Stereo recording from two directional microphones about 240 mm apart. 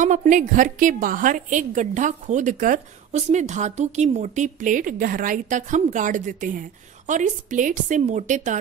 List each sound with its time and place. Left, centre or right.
0.0 s a woman's voice: right